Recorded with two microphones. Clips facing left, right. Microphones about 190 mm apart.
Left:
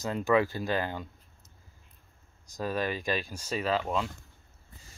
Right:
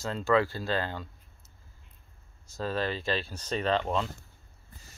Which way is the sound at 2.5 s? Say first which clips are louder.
Even; 15° left (ahead or behind).